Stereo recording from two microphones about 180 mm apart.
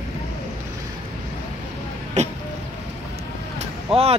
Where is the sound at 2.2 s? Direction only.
40° right (ahead or behind).